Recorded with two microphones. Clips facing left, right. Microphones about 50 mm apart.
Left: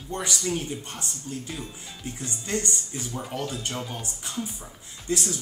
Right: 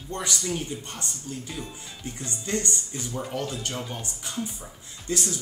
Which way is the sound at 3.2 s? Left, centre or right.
Centre.